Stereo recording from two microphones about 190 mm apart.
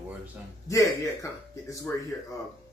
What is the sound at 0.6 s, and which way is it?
A man's voice, 15° left (ahead or behind).